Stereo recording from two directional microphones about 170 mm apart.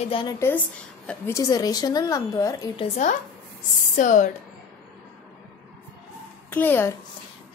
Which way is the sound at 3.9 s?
50° left (ahead or behind).